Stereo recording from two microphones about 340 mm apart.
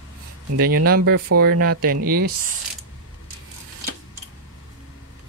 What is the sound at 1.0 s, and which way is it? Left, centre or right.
Speech, right.